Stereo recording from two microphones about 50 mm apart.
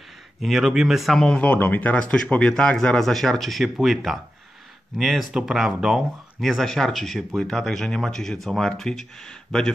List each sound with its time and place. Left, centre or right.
0.4 s speech: centre
1.1 s speech: centre
1.4 s a man's voice: left; by 3.0 s centre
3.0 s speech: centre
6.4 s speech: centre